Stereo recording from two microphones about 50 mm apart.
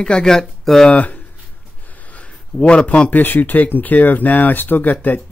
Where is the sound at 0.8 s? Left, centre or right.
Left.